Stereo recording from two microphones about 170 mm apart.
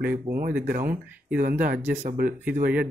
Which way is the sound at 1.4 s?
55° right (ahead or behind).